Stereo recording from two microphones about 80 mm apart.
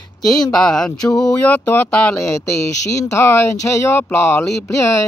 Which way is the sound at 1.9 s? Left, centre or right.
Centre.